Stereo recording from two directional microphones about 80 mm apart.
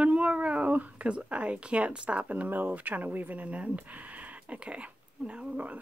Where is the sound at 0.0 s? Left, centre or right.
Centre.